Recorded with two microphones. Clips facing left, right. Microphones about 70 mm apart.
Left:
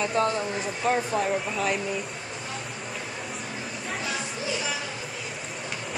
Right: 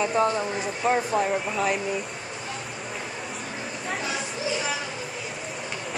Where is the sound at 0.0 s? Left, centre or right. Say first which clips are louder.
Right 2 dB; centre.